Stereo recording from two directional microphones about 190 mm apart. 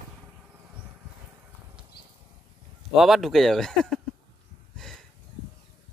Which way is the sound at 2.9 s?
Centre (ahead or behind).